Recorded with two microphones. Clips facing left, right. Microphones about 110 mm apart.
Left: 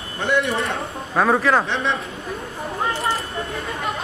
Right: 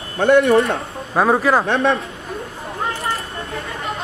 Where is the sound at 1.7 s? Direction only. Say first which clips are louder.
Right 6 dB; 70° right (ahead or behind).